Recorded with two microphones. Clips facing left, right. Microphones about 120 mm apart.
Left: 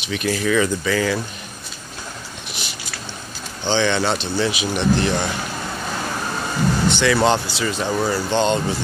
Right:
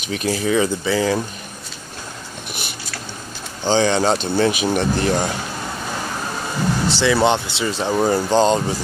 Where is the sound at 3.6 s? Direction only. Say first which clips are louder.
Right 3 dB; 40° right (ahead or behind).